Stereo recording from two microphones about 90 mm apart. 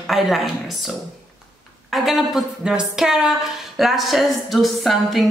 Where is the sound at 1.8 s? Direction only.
Centre (ahead or behind).